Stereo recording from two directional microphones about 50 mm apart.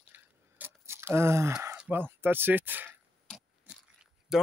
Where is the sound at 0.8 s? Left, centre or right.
Right.